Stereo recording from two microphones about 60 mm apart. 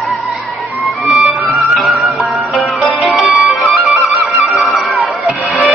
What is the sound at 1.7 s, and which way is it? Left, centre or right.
Music, centre.